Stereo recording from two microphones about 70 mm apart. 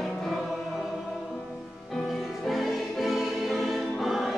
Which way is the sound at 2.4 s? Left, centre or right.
Centre.